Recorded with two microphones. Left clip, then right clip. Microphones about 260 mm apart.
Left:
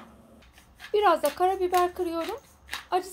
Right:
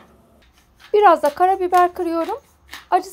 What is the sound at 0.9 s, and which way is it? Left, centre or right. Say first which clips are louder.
Speech: right 9 dB; right.